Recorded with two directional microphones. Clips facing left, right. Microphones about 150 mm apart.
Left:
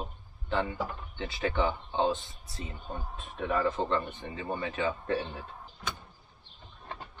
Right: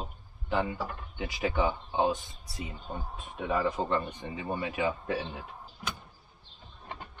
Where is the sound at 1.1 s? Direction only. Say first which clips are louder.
Right 1 dB; 10° right (ahead or behind).